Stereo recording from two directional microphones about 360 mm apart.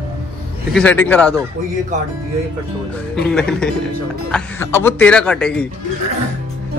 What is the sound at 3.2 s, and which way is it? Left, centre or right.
Speech, centre.